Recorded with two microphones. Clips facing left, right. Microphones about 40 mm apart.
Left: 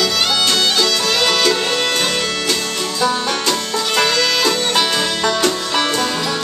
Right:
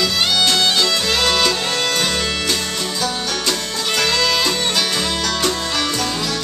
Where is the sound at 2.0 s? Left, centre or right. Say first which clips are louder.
Left 1 dB; centre.